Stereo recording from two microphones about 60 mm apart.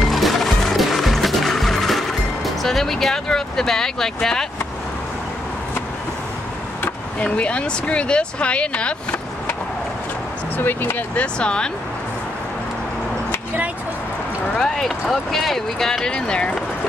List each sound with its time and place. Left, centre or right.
0.0 s music: centre
7.2 s speech: centre
10.6 s speech: left
11.1 s speech: centre
14.5 s speech: centre